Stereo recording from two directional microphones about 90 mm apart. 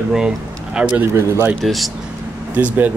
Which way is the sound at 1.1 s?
30° right (ahead or behind).